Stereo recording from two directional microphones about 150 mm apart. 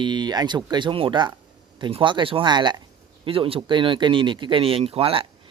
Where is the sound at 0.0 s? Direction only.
30° right (ahead or behind).